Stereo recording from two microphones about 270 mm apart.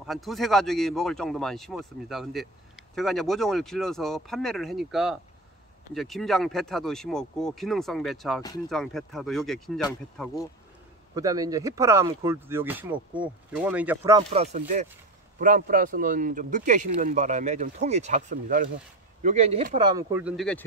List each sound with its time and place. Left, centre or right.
0.0 s speech: centre
11.1 s speech: centre
14.3 s speech: right; by 20.6 s centre